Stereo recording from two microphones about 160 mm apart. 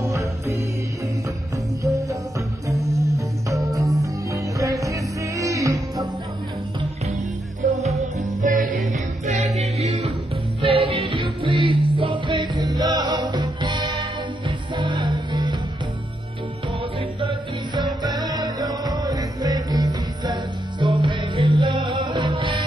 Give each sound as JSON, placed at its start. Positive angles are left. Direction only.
{"t": 0.0, "sound": "music", "side_deg": -20}
{"t": 1.8, "sound": "music", "side_deg": -20}
{"t": 8.2, "sound": "music", "side_deg": -50}
{"t": 17.2, "sound": "music", "side_deg": -30}